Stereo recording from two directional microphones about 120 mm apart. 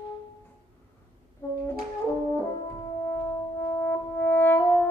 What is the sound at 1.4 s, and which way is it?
Brass instrument, 20° left (ahead or behind).